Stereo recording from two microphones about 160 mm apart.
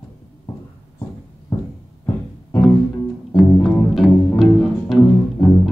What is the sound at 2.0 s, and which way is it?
Music, 15° left (ahead or behind).